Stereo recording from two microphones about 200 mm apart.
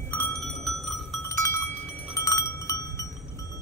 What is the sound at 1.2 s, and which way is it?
Cowbell, 15° left (ahead or behind).